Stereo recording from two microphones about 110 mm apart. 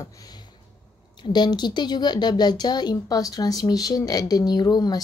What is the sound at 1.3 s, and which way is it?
Speech, 40° left (ahead or behind).